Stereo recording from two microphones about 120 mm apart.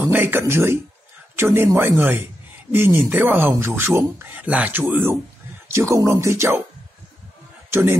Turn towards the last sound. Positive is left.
turn(degrees=-20)  # may be behind; listen again after turning